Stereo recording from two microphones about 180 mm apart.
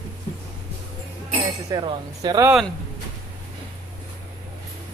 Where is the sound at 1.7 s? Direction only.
25° right (ahead or behind).